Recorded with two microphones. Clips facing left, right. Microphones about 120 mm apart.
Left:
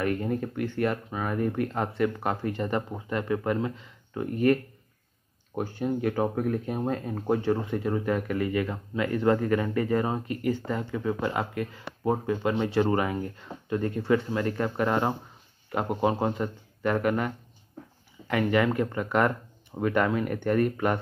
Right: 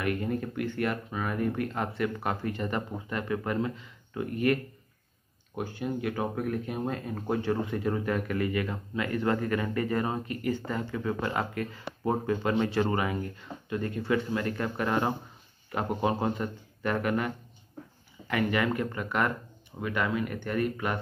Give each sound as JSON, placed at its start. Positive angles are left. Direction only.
{"t": 0.0, "sound": "speech", "side_deg": 30}
{"t": 12.9, "sound": "speech", "side_deg": 30}
{"t": 18.3, "sound": "speech", "side_deg": 25}
{"t": 19.8, "sound": "speech", "side_deg": 45}